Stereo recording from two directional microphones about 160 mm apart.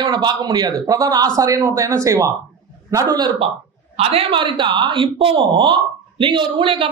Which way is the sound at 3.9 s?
35° right (ahead or behind).